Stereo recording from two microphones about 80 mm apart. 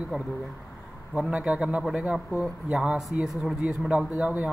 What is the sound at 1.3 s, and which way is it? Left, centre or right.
Speech, centre.